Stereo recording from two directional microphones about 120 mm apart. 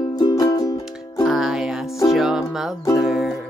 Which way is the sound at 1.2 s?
5° right (ahead or behind).